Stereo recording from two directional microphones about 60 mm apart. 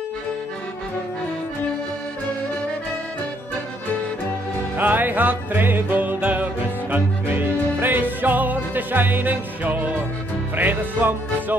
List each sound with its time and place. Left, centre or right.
4.7 s music: right